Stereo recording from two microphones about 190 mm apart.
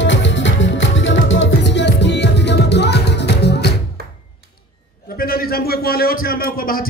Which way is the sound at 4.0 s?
55° right (ahead or behind).